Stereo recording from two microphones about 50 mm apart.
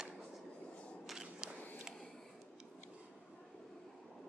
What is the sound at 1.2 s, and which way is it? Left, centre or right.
Walk, centre.